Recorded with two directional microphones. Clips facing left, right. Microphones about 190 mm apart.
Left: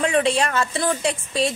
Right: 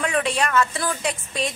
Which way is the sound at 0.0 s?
30° left (ahead or behind).